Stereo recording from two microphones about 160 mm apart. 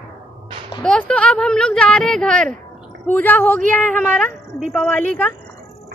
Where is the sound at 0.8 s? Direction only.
5° left (ahead or behind).